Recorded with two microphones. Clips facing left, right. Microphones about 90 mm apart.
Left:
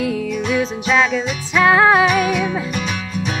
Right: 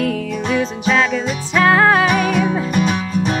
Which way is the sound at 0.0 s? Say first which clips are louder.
Even; centre (ahead or behind).